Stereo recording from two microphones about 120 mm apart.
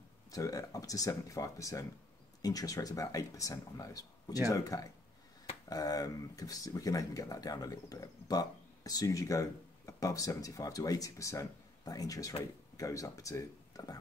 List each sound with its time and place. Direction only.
0.3 s speech: 30° left (ahead or behind)